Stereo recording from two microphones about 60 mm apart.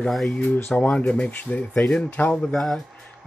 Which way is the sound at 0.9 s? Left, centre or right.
Left.